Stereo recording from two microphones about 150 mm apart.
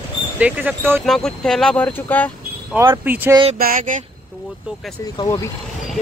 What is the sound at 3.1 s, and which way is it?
Speech, 10° right (ahead or behind).